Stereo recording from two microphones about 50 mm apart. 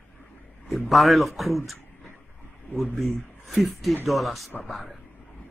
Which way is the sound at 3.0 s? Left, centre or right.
Centre.